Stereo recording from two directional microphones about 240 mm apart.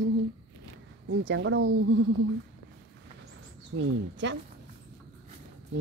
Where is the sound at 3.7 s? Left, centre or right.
Right.